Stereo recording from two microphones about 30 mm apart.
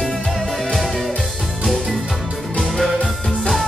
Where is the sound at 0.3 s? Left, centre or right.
Centre.